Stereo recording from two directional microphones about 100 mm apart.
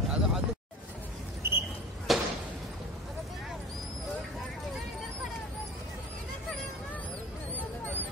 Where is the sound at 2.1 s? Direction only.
Centre (ahead or behind).